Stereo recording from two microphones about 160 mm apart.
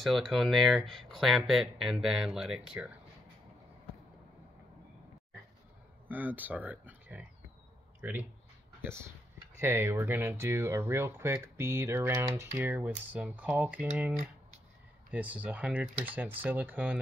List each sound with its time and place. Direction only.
0.0 s speech: centre (ahead or behind)
6.0 s speech: 10° right (ahead or behind)
9.6 s speech: 15° right (ahead or behind)